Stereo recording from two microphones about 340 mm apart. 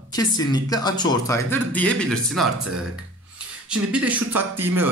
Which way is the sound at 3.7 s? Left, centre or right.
Centre.